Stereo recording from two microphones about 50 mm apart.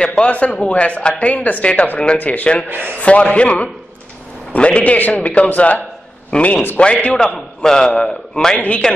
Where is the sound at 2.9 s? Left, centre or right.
Left.